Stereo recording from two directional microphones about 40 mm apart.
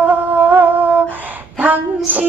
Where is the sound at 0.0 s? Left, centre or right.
Right.